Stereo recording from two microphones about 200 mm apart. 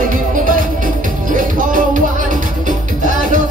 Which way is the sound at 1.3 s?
40° right (ahead or behind).